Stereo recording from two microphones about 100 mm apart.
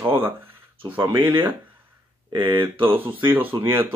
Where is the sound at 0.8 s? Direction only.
55° right (ahead or behind).